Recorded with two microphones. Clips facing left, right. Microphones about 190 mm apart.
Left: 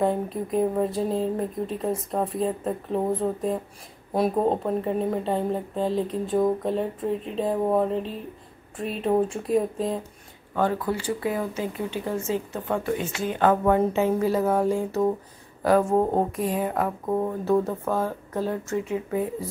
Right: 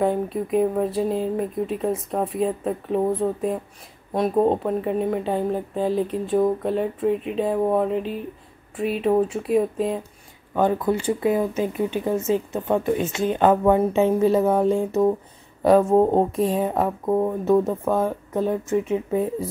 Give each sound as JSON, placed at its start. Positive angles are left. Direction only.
{"t": 0.0, "sound": "speech", "side_deg": 0}
{"t": 10.5, "sound": "a woman's voice", "side_deg": -15}